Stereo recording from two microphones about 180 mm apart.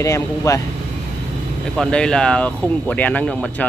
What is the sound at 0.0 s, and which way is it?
Speech, 15° left (ahead or behind).